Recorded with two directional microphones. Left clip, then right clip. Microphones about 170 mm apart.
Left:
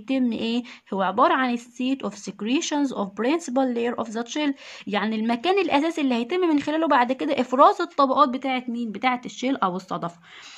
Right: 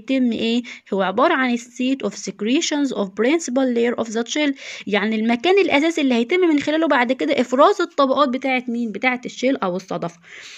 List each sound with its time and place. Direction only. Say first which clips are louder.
0.1 s a woman's voice: right 5 dB; 15° right (ahead or behind)